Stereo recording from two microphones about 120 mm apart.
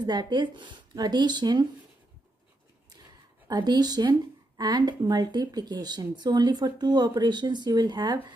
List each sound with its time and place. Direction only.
0.0 s speech: 35° right (ahead or behind)
3.4 s speech: 35° right (ahead or behind)